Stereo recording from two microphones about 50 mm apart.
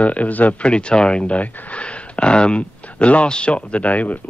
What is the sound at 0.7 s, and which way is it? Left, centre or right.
Speech, centre.